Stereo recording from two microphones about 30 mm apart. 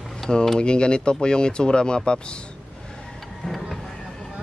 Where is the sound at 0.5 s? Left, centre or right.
Left.